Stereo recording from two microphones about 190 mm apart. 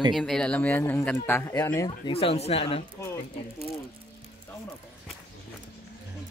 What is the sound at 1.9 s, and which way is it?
Speech, 30° left (ahead or behind).